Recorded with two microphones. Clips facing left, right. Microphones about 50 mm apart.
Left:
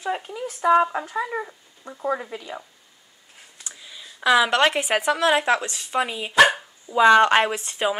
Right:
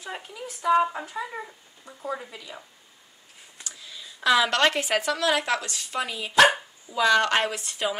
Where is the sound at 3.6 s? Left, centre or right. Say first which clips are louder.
Even; centre.